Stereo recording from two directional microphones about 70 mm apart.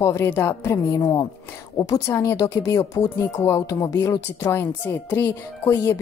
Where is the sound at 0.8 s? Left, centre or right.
Left.